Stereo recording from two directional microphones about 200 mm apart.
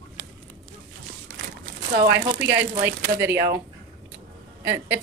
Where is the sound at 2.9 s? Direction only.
45° right (ahead or behind).